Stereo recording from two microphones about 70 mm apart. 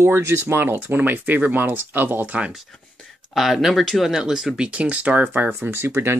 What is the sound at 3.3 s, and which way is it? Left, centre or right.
Speech, centre.